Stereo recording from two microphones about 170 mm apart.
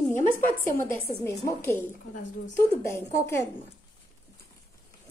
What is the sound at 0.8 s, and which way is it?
Speech, 15° left (ahead or behind).